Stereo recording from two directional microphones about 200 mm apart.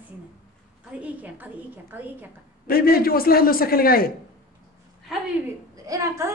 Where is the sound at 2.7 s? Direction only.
50° left (ahead or behind).